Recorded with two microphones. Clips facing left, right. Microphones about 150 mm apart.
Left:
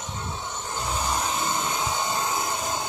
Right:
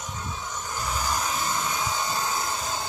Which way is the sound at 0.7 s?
25° left (ahead or behind).